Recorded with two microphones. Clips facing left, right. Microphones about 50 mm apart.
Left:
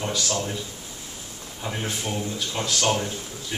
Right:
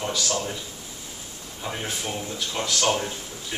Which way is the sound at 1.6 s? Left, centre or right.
Centre.